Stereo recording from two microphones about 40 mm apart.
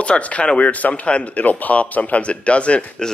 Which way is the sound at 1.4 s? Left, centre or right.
Left.